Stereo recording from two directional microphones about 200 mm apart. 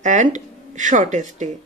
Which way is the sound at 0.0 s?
40° right (ahead or behind).